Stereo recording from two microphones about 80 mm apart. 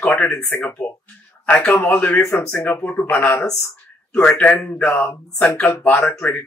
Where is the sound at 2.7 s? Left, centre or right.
Left.